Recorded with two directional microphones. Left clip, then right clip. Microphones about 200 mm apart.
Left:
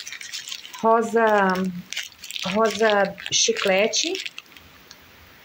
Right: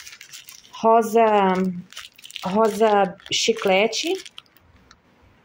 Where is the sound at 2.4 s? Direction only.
15° right (ahead or behind).